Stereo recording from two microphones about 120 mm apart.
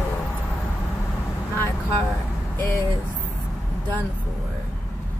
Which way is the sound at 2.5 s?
25° left (ahead or behind).